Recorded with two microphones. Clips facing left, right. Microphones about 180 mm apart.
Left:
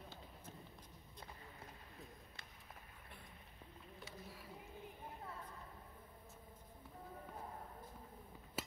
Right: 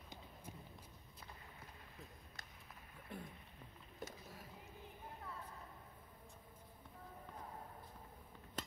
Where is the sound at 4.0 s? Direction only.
45° right (ahead or behind).